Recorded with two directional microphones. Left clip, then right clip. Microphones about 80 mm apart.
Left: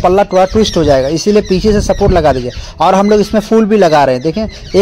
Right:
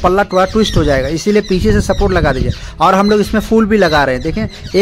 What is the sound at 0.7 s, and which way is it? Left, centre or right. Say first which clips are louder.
Speech: left 4 dB; centre.